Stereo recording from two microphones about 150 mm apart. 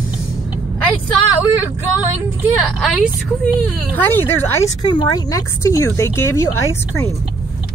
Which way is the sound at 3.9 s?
15° left (ahead or behind).